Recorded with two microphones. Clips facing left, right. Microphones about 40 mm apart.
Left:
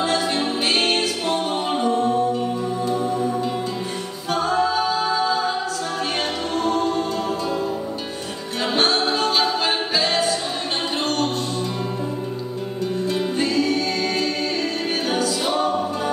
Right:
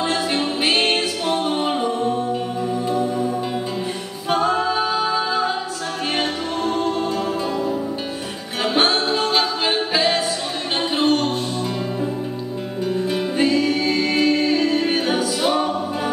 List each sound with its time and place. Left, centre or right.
0.0 s music: centre
4.3 s a capella: centre
6.1 s music: centre
8.6 s music: centre
9.1 s a capella: centre
11.0 s music: centre
13.0 s music: centre